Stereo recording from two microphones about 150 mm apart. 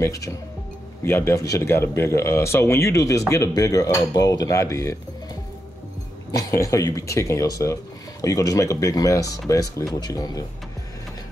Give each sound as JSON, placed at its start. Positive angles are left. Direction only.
{"t": 0.0, "sound": "speech", "side_deg": 20}
{"t": 6.3, "sound": "speech", "side_deg": 20}